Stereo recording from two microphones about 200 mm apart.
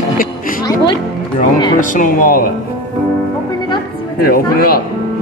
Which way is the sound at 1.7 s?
40° left (ahead or behind).